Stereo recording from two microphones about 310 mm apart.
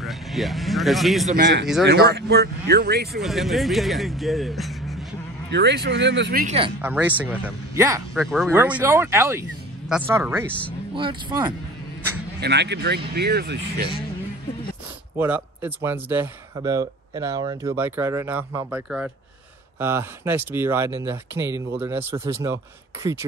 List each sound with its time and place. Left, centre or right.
0.0 s speech: centre
1.3 s speech: right
3.2 s speech: centre
5.5 s speech: right
6.8 s speech: centre
12.4 s speech: right
15.1 s speech: centre